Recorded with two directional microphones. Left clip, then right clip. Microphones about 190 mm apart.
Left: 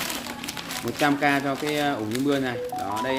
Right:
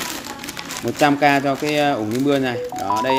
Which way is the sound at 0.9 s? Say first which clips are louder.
Right 7 dB; 40° right (ahead or behind).